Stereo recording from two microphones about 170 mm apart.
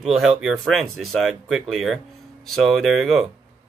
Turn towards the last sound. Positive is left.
turn(degrees=0)  # may be behind; listen again after turning